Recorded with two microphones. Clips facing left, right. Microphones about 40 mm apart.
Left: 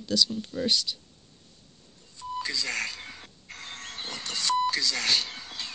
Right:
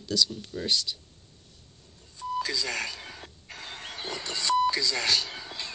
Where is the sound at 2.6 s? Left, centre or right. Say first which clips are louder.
Even; centre.